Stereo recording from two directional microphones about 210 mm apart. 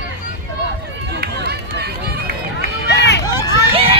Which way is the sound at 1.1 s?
50° right (ahead or behind).